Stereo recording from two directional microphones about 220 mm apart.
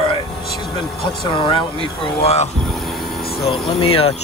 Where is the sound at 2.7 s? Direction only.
Centre (ahead or behind).